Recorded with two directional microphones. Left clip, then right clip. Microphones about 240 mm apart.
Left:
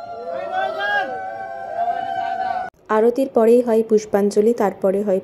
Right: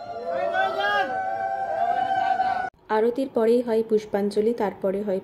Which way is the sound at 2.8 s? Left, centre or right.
Centre.